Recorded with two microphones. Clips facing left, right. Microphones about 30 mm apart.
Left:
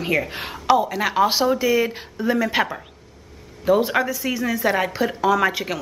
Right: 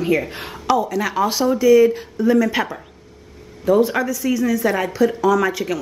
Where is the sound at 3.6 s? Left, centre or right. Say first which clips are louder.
Right 2 dB; left.